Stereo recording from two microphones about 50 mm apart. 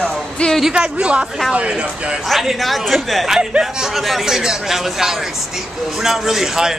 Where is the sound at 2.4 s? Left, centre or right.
Centre.